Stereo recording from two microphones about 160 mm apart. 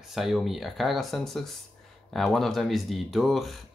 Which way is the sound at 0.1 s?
Centre (ahead or behind).